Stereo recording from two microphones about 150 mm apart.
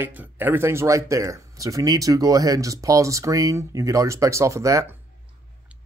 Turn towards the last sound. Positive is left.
turn(degrees=-20)  # may be behind; listen again after turning